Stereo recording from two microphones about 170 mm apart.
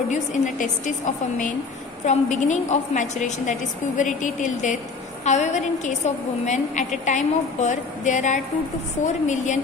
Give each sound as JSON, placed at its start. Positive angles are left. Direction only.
{"t": 0.1, "sound": "a woman's voice", "side_deg": 45}
{"t": 2.0, "sound": "a woman's voice", "side_deg": 45}